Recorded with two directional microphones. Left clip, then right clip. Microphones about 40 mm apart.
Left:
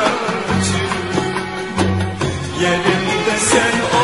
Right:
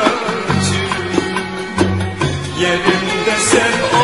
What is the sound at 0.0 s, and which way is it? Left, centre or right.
Music, right.